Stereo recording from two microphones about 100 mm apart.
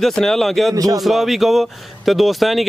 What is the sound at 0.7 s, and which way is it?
Speech, 40° right (ahead or behind).